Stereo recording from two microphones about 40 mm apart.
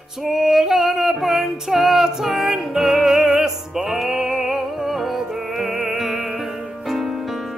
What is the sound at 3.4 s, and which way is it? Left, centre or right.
Music, centre.